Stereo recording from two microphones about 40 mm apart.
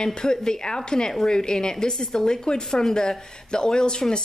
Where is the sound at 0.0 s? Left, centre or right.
Centre.